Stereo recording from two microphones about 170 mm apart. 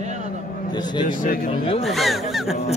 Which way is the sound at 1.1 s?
50° left (ahead or behind).